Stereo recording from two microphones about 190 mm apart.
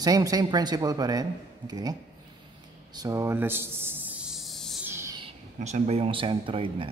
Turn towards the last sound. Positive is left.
turn(degrees=-25)  # may be behind; listen again after turning